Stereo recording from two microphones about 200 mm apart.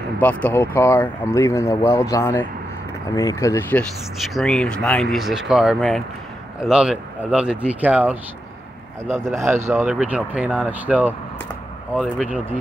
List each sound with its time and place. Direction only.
0.2 s speech: 10° left (ahead or behind)
4.2 s speech: centre (ahead or behind)
9.5 s speech: 10° right (ahead or behind)